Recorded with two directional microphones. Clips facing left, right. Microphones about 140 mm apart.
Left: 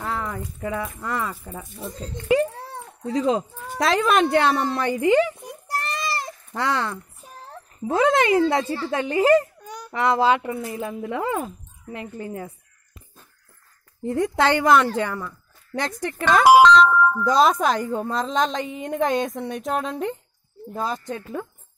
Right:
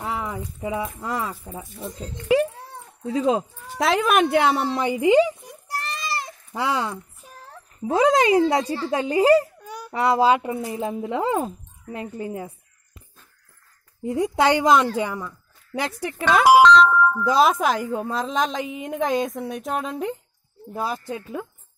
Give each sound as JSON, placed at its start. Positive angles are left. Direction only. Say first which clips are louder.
{"t": 0.0, "sound": "a sound", "louder": "even", "side_deg": -10}
{"t": 0.6, "sound": "a woman's voice", "louder": "right 1 dB", "side_deg": -15}
{"t": 1.5, "sound": "a woman's voice", "louder": "even", "side_deg": -5}
{"t": 2.5, "sound": "dog", "louder": "left 4 dB", "side_deg": 90}
{"t": 3.2, "sound": "a woman's voice", "louder": "even", "side_deg": -15}
{"t": 3.8, "sound": "a woman's voice", "louder": "even", "side_deg": 0}
{"t": 5.4, "sound": "a sound", "louder": "left 3 dB", "side_deg": 55}
{"t": 6.5, "sound": "a woman's voice", "louder": "even", "side_deg": -10}
{"t": 11.3, "sound": "speech", "louder": "right 3 dB", "side_deg": -30}
{"t": 14.0, "sound": "a woman's voice", "louder": "right 1 dB", "side_deg": -10}